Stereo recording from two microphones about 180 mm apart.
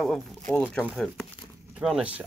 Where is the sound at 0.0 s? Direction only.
5° left (ahead or behind).